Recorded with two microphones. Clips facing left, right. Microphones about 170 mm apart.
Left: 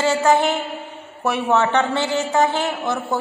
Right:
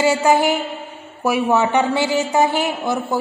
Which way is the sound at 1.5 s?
15° right (ahead or behind).